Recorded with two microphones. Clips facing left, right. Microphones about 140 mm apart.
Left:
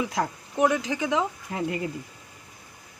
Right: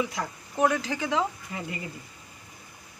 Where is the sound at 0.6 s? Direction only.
15° left (ahead or behind).